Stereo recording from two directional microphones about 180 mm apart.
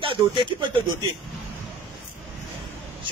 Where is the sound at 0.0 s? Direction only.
30° right (ahead or behind).